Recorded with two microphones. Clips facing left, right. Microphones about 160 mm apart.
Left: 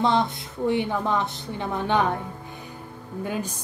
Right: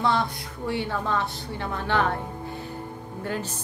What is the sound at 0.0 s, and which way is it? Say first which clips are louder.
A woman's voice: left 2 dB; 20° left (ahead or behind).